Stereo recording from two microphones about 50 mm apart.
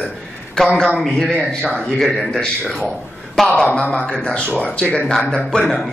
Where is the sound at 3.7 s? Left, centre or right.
Left.